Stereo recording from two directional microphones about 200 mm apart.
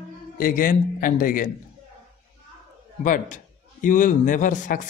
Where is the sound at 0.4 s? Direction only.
45° left (ahead or behind).